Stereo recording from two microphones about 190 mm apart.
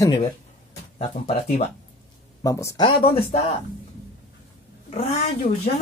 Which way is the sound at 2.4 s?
15° left (ahead or behind).